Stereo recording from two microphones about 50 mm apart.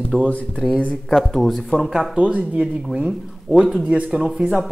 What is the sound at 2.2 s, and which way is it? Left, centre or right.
Speech, right.